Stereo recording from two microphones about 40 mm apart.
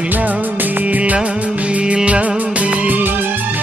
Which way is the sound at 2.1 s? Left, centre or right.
Right.